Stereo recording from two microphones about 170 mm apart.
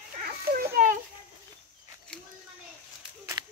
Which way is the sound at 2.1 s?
5° left (ahead or behind).